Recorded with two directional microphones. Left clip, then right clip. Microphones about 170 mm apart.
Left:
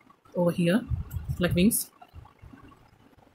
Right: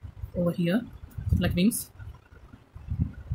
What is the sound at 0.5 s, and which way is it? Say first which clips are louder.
Speech: left 1 dB; 15° left (ahead or behind).